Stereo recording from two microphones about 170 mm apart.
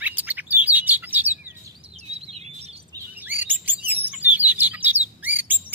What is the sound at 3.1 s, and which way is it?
Chirp, 10° right (ahead or behind).